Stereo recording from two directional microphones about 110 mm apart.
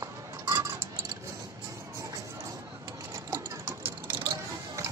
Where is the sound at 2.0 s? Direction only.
30° right (ahead or behind).